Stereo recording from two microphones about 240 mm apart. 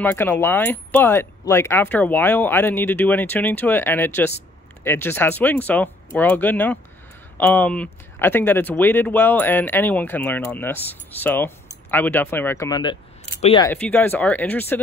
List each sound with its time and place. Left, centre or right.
0.0 s speech: centre
13.7 s speech: centre